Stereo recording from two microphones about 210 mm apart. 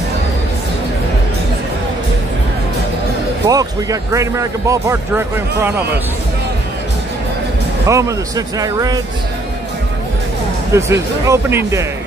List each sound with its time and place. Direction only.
3.4 s speech: 15° right (ahead or behind)
7.8 s speech: 15° right (ahead or behind)
10.7 s speech: 15° right (ahead or behind)